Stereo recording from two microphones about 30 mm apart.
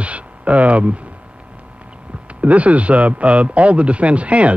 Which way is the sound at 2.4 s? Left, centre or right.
Right.